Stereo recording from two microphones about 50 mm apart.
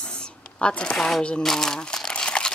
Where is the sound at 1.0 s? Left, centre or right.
Centre.